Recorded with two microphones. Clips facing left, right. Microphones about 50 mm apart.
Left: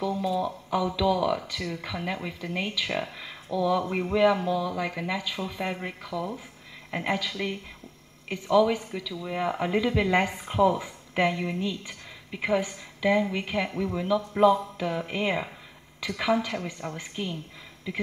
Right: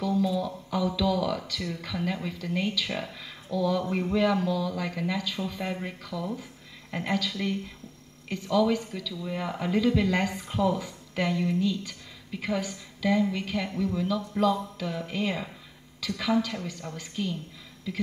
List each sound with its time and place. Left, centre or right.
0.0 s speech: centre